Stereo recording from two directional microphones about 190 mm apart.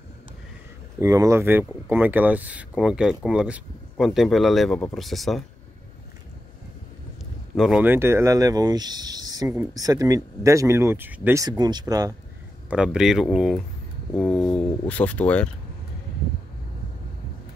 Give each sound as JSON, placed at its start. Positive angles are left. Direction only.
{"t": 1.0, "sound": "speech", "side_deg": -15}
{"t": 7.5, "sound": "speech", "side_deg": 0}
{"t": 12.6, "sound": "speech", "side_deg": -5}